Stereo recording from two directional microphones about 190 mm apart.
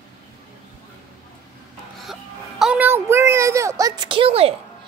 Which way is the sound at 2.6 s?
5° right (ahead or behind).